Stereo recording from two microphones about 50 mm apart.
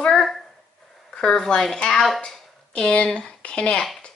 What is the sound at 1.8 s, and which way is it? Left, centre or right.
A woman's voice, centre.